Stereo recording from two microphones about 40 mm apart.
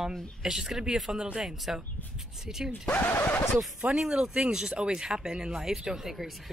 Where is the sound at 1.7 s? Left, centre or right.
Centre.